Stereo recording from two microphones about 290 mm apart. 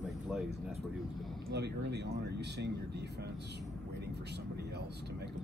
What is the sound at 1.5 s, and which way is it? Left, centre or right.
Speech, right.